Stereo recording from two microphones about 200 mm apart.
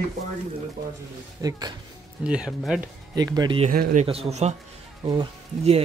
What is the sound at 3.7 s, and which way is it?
Speech, 40° right (ahead or behind).